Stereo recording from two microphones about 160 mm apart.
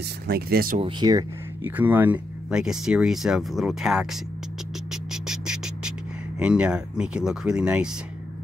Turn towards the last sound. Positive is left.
turn(degrees=-5)  # may be behind; listen again after turning